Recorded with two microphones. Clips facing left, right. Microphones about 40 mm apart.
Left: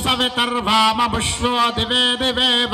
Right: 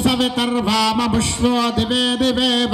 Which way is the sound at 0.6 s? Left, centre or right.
Left.